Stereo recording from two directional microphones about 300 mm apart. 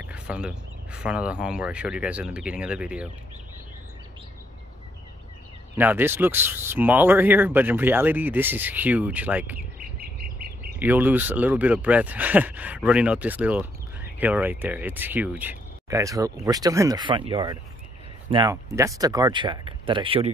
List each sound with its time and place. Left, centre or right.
0.0 s speech: centre
5.8 s speech: centre
9.8 s bird: right
10.8 s speech: centre